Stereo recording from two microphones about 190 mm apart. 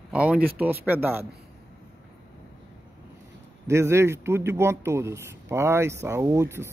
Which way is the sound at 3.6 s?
15° right (ahead or behind).